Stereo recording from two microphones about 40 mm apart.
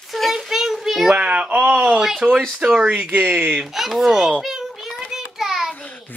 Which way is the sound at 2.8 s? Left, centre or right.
Right.